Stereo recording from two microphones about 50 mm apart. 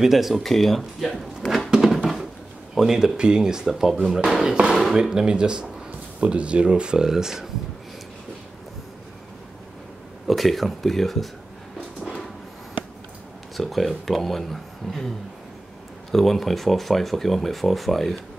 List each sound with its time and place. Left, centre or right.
0.0 s speech: centre
1.7 s a sound: centre
2.7 s speech: centre
4.6 s speech: centre
4.9 s speech: centre
10.2 s speech: centre
13.6 s speech: centre